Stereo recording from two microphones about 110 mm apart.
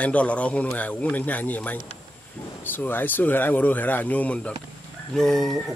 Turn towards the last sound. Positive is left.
turn(degrees=0)  # may be behind; listen again after turning